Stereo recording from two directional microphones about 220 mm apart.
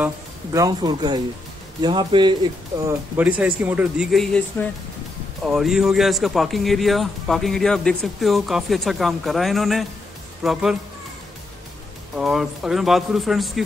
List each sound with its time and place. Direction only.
0.0 s speech: 15° right (ahead or behind)
3.2 s speech: 5° right (ahead or behind)
12.2 s speech: centre (ahead or behind)